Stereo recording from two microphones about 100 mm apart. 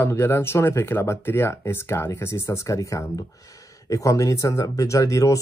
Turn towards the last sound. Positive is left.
turn(degrees=30)  # may be behind; listen again after turning